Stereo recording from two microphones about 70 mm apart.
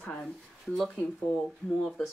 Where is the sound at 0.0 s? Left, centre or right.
Centre.